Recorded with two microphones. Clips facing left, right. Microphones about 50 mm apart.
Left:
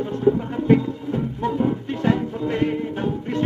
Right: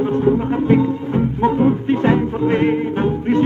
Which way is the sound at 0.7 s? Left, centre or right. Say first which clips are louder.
Right 7 dB; right.